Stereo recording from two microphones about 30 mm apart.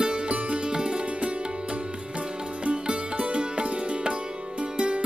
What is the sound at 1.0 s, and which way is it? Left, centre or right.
Music, right.